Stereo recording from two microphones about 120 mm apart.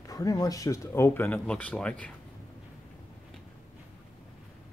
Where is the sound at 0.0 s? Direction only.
30° left (ahead or behind); by 2.1 s 10° left (ahead or behind).